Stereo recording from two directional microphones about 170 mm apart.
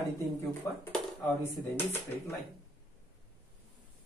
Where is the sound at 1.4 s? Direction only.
15° left (ahead or behind).